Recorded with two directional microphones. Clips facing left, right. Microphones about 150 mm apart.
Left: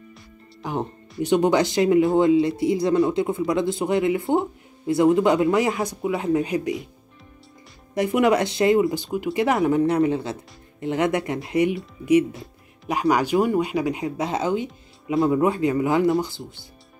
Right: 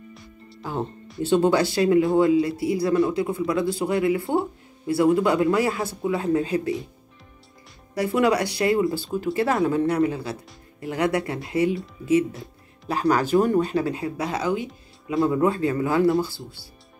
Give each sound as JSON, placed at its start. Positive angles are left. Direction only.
{"t": 0.6, "sound": "speech", "side_deg": 15}
{"t": 7.9, "sound": "speech", "side_deg": 20}
{"t": 13.0, "sound": "speech", "side_deg": 15}